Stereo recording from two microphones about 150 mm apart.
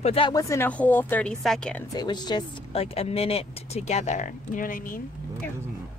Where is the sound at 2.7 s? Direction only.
40° left (ahead or behind); by 5.0 s 65° left (ahead or behind).